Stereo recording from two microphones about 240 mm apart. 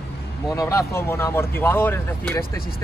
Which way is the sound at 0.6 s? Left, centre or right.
Centre.